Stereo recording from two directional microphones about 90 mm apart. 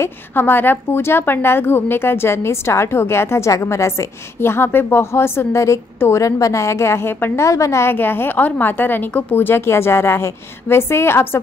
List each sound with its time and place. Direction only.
0.0 s a woman's voice: 20° left (ahead or behind)
7.4 s a woman's voice: 35° left (ahead or behind)